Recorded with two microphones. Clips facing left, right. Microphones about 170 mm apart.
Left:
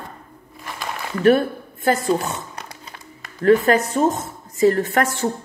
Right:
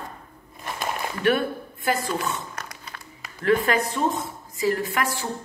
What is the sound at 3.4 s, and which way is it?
A woman's voice, 40° left (ahead or behind).